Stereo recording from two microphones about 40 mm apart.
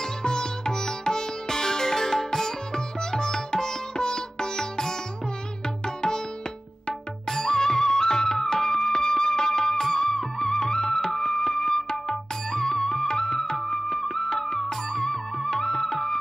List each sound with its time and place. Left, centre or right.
0.2 s music: centre
6.9 s music: centre